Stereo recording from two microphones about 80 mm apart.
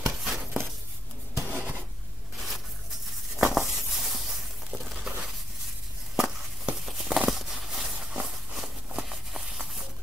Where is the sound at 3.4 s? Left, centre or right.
Centre.